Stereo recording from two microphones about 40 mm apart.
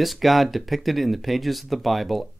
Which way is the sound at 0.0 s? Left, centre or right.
Centre.